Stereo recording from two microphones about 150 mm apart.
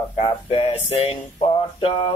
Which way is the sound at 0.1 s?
40° left (ahead or behind).